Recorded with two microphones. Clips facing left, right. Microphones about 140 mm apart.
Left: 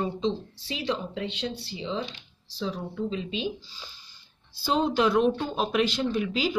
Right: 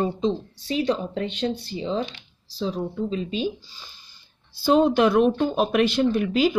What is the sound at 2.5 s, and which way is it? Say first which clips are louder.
A woman's voice: right 5 dB; 35° right (ahead or behind).